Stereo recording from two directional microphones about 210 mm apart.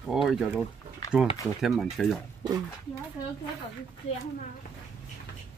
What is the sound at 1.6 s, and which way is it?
Speech, centre (ahead or behind).